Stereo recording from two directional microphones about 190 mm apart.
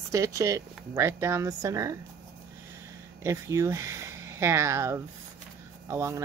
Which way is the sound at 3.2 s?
15° right (ahead or behind).